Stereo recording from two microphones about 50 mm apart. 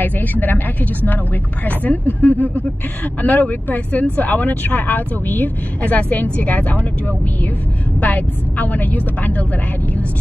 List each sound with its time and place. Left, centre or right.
0.0 s speech: left